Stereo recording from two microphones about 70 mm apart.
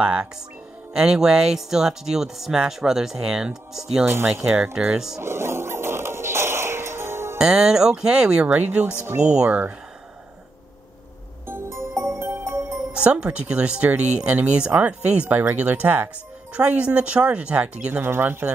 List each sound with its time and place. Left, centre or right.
0.0 s speech: centre
5.2 s music: right
7.3 s speech: centre
8.5 s speech: right
11.4 s music: right
12.9 s speech: centre
18.0 s speech: right